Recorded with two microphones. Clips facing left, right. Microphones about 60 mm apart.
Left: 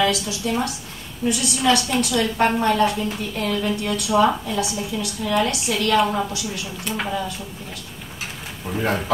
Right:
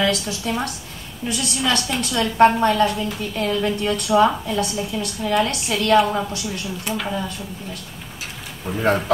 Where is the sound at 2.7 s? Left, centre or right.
Left.